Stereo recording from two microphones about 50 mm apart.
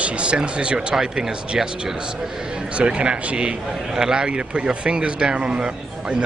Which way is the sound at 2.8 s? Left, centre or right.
Right.